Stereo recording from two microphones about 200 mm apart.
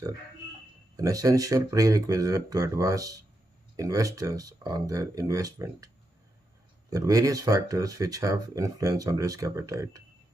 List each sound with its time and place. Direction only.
0.9 s speech: 15° right (ahead or behind)
6.9 s speech: 15° right (ahead or behind)